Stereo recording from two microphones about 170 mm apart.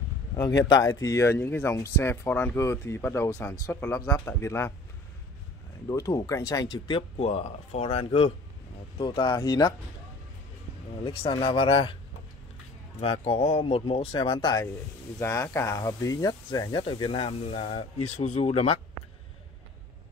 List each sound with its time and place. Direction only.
0.7 s speech: 20° left (ahead or behind)
5.9 s speech: 20° left (ahead or behind)
11.1 s speech: 30° left (ahead or behind)
13.0 s speech: 35° left (ahead or behind)